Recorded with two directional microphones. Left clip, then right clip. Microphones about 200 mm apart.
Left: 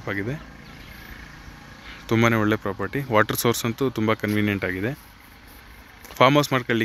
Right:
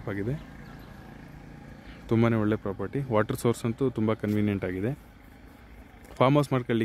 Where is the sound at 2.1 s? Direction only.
Centre (ahead or behind).